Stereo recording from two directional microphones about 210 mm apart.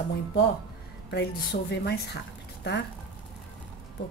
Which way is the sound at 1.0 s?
55° left (ahead or behind).